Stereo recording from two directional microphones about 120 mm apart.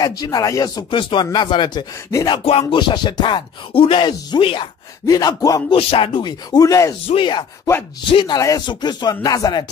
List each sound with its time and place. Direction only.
0.0 s speech: 35° left (ahead or behind)
0.8 s speech: 45° left (ahead or behind)
2.0 s a sound: 25° left (ahead or behind)
2.3 s speech: 50° left (ahead or behind)
2.7 s speech: 40° left (ahead or behind)
5.0 s speech: 30° left (ahead or behind)
5.8 s speech: 50° left (ahead or behind); by 7.0 s 30° left (ahead or behind)
7.2 s speech: 40° left (ahead or behind)
8.4 s a sound: 30° left (ahead or behind)
8.6 s speech: 35° left (ahead or behind)